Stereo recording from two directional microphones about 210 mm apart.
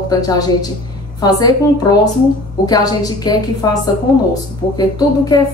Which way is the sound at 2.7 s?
20° left (ahead or behind).